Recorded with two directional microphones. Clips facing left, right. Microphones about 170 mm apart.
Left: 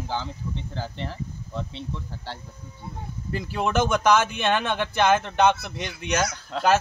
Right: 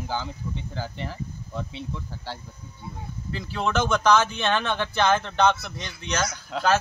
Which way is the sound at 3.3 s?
15° left (ahead or behind).